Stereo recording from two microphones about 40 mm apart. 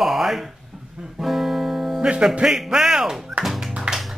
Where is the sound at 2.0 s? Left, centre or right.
Right.